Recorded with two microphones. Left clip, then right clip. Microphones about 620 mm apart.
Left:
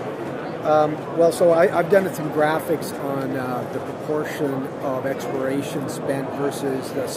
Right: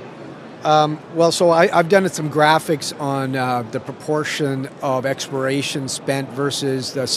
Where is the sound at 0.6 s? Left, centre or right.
Right.